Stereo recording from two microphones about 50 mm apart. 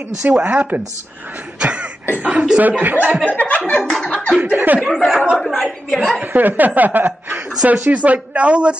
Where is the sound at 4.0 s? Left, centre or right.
Left.